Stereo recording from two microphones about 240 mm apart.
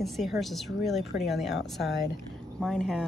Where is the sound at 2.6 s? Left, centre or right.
Centre.